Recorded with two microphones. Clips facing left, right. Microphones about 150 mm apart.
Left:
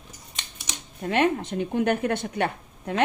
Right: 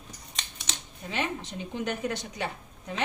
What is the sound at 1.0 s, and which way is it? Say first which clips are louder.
A woman's voice: left 10 dB; 55° left (ahead or behind).